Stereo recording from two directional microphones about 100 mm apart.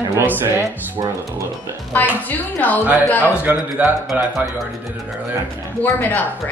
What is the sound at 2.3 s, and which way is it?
Speech, 20° left (ahead or behind).